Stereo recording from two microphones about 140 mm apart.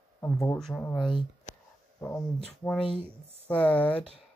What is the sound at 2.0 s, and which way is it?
Speech, 10° left (ahead or behind).